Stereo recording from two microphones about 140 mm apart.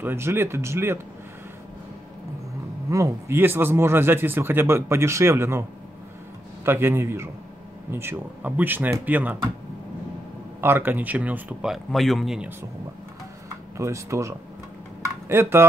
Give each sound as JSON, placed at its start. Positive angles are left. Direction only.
{"t": 0.0, "sound": "speech", "side_deg": -15}
{"t": 2.9, "sound": "speech", "side_deg": -20}
{"t": 10.6, "sound": "speech", "side_deg": -15}
{"t": 13.7, "sound": "speech", "side_deg": -20}